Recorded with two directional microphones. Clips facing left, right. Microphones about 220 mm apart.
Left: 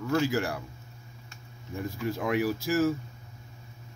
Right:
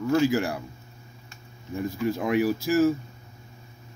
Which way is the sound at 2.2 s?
20° right (ahead or behind).